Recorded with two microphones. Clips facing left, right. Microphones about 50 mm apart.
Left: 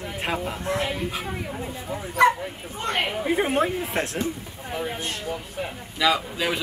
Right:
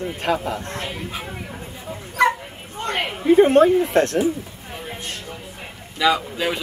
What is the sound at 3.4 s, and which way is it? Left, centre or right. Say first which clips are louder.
Speech: right 12 dB; centre.